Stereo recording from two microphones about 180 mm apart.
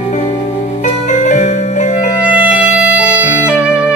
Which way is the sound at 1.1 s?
45° left (ahead or behind).